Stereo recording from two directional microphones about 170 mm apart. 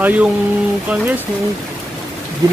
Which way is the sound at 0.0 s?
10° right (ahead or behind).